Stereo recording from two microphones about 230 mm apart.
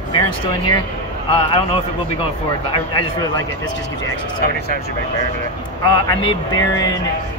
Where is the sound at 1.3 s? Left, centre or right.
Left.